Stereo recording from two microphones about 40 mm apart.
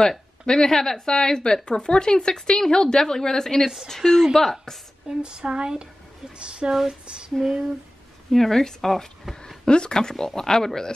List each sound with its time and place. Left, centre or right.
0.0 s speech: centre
3.6 s speech: centre
3.9 s speech: centre
5.2 s speech: right
6.9 s a sound: centre
8.3 s speech: centre